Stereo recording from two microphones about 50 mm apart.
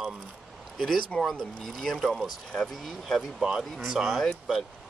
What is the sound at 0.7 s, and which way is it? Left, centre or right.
Speech, centre.